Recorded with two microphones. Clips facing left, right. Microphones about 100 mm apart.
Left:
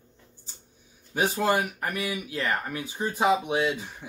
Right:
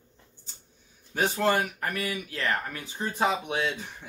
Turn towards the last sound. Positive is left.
turn(degrees=10)  # may be behind; listen again after turning